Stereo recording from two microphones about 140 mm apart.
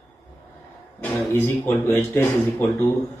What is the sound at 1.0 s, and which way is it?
A man's voice, 15° left (ahead or behind).